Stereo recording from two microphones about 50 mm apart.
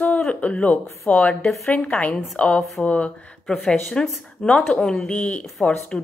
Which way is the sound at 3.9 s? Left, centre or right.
Centre.